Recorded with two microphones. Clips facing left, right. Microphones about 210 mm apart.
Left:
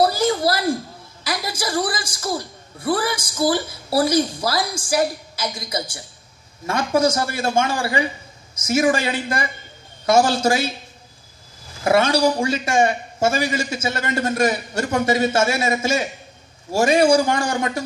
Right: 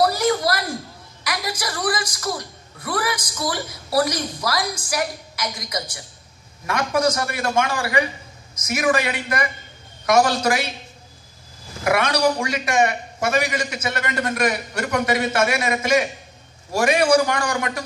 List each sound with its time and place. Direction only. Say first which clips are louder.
0.0 s a sound: left 1 dB; 25° left (ahead or behind)
1.2 s a woman's voice: left 2 dB; 25° left (ahead or behind)
11.8 s a woman's voice: left 3 dB; 30° left (ahead or behind)